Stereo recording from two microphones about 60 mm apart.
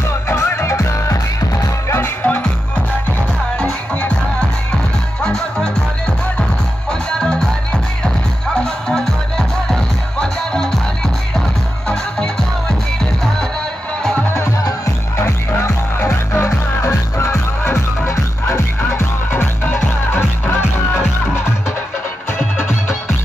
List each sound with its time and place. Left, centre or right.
0.4 s music: left
2.2 s music: left
3.5 s music: centre
5.2 s music: centre
6.9 s music: centre
10.2 s music: centre
11.9 s music: centre
15.1 s music: left